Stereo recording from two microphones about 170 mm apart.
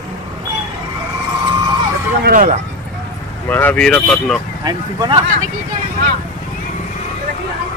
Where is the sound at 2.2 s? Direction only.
45° right (ahead or behind).